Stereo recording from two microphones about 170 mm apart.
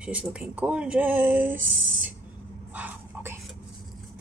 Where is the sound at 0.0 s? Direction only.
5° right (ahead or behind).